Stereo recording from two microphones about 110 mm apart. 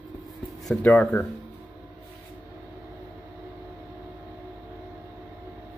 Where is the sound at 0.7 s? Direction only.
10° left (ahead or behind).